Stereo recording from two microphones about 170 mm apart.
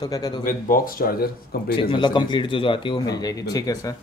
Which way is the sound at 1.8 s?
30° left (ahead or behind).